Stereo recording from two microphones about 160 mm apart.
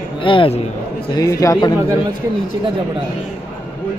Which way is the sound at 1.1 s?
20° left (ahead or behind).